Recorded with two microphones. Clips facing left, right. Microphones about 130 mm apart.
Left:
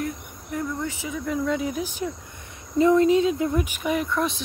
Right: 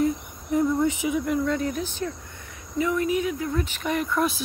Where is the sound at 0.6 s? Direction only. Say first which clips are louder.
Right 7 dB; 20° right (ahead or behind).